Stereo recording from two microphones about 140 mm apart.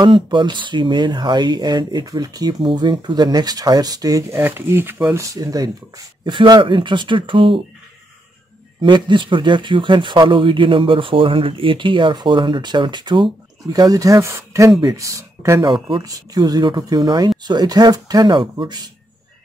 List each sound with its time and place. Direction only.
0.0 s speech: 35° right (ahead or behind)
8.8 s speech: 35° right (ahead or behind)
15.6 s speech: 35° right (ahead or behind)